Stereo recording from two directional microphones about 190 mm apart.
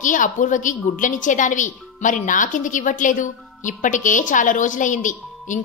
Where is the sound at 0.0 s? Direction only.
40° left (ahead or behind).